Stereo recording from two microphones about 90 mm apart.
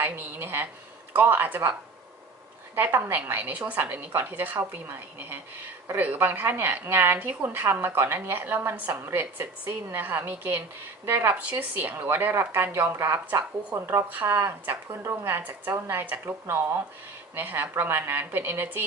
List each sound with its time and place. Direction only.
0.0 s a woman's voice: 25° right (ahead or behind)
12.7 s a woman's voice: 30° right (ahead or behind)